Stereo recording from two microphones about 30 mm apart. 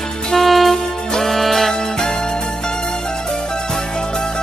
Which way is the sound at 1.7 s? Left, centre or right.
Left.